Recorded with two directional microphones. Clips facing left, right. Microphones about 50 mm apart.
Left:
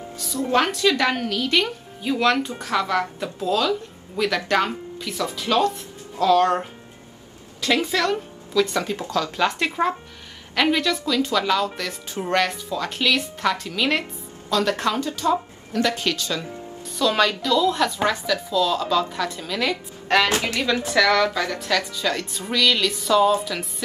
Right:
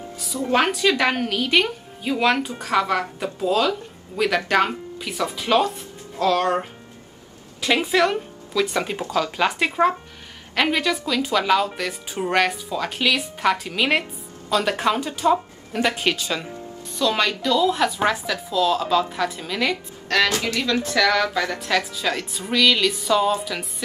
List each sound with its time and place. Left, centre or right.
0.3 s speech: centre
3.2 s speech: centre
6.1 s music: centre
7.6 s speech: right
17.0 s speech: centre
20.1 s speech: left
20.8 s music: centre
21.6 s speech: centre
22.5 s music: centre